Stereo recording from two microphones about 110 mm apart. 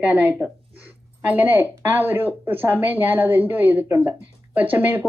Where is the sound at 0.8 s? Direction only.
15° right (ahead or behind).